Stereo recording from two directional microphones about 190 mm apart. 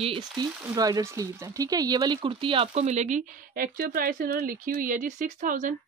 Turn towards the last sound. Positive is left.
turn(degrees=-45)  # may be behind; listen again after turning